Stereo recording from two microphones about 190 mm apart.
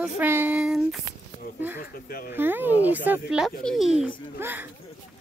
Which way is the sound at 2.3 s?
10° right (ahead or behind).